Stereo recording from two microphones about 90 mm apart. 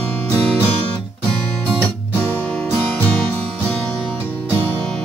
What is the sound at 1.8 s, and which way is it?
Music, 20° left (ahead or behind).